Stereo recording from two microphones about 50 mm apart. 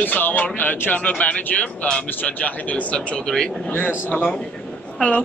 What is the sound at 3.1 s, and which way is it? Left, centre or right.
Speech, centre.